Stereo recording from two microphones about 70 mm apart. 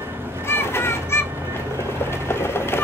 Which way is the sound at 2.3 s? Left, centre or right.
Left.